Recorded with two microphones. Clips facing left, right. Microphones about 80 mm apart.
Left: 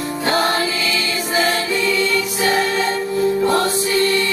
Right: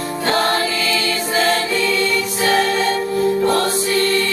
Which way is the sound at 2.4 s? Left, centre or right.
Centre.